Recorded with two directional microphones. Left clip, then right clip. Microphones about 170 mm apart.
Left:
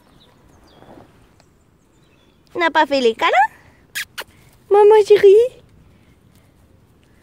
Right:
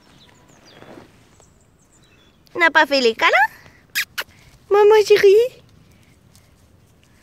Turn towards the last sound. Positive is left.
turn(degrees=20)  # may be behind; listen again after turning